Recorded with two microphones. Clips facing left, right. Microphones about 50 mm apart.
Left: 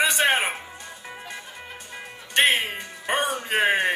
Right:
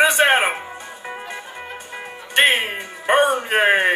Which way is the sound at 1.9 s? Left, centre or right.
Right.